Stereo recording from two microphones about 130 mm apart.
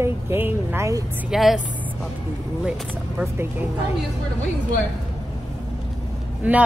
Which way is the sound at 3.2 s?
20° right (ahead or behind).